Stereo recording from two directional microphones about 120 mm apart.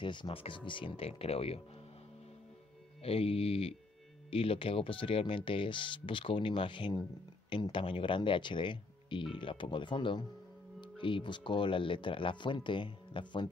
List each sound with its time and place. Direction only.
0.0 s speech: 40° left (ahead or behind)
3.0 s speech: 55° left (ahead or behind)